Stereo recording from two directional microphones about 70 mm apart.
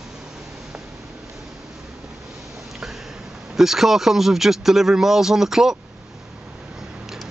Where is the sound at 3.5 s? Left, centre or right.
Centre.